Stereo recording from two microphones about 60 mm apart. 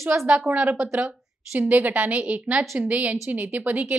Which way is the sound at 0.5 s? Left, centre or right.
Right.